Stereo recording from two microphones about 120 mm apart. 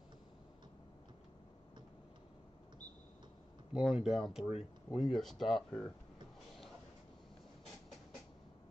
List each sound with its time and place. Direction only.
3.7 s speech: 5° right (ahead or behind)
4.6 s speech: 55° left (ahead or behind)
5.1 s speech: centre (ahead or behind)